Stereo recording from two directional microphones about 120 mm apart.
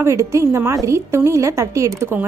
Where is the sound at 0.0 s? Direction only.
25° right (ahead or behind).